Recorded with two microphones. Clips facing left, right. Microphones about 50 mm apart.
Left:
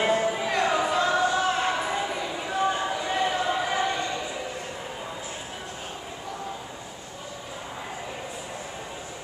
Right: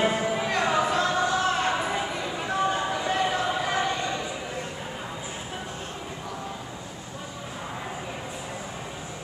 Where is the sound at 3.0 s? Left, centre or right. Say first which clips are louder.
Even; centre.